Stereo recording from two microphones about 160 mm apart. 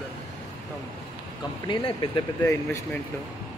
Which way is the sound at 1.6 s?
30° left (ahead or behind).